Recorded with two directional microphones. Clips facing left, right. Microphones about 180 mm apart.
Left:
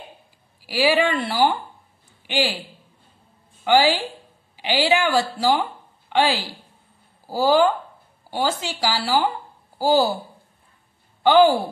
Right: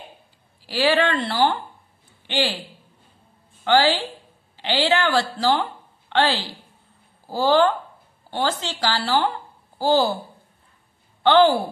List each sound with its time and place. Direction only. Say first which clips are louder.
0.6 s a woman's voice: left 1 dB; 10° left (ahead or behind)
3.6 s a woman's voice: left 1 dB; 10° left (ahead or behind)
11.2 s a woman's voice: left 1 dB; 10° left (ahead or behind)